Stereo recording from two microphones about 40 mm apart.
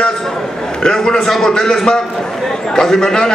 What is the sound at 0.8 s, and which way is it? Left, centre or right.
A man's voice, centre.